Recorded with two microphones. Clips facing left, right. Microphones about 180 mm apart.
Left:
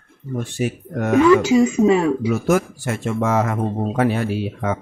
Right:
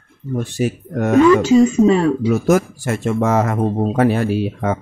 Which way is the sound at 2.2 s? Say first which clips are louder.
Right 3 dB; 40° right (ahead or behind).